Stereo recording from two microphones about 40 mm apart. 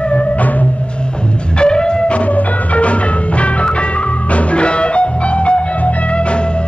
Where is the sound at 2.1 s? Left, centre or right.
Left.